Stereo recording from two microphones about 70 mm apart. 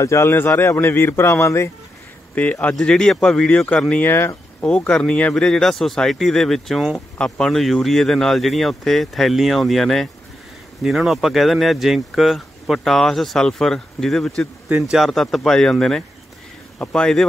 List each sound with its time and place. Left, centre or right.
0.0 s a man's voice: left
2.3 s a man's voice: left
5.3 s speech: centre
7.2 s speech: centre
14.7 s speech: right
15.0 s a man's voice: centre